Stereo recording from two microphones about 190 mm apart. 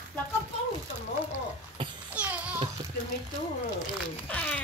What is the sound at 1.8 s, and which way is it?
Babbling, 25° right (ahead or behind).